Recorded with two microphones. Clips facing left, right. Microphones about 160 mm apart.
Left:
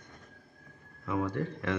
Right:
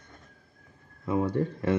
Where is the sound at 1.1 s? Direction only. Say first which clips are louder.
Right 5 dB; 30° right (ahead or behind).